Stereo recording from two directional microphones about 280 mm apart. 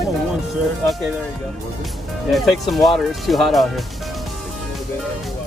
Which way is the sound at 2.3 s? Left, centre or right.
Centre.